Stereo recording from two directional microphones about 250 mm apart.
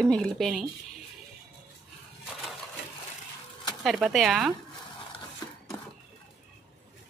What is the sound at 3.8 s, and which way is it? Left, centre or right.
Speech, centre.